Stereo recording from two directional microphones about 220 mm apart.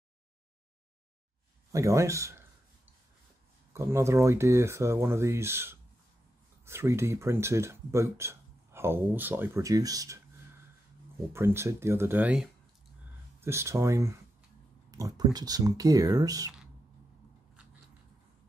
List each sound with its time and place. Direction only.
1.7 s speech: 15° right (ahead or behind)
3.7 s speech: 10° right (ahead or behind)
11.3 s speech: 10° right (ahead or behind)